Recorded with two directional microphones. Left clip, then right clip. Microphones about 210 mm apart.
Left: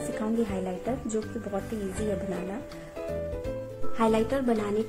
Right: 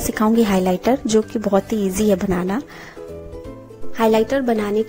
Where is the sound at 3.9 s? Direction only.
30° right (ahead or behind).